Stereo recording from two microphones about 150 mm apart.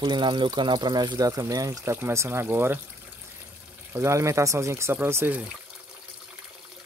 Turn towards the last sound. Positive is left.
turn(degrees=-15)  # may be behind; listen again after turning